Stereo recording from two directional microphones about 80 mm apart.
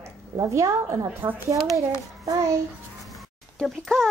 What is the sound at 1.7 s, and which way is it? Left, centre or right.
Child singing, right.